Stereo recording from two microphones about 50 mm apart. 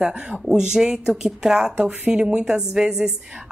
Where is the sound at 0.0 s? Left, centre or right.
Centre.